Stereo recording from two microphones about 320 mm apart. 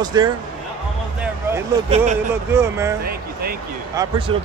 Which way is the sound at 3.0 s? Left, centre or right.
Right.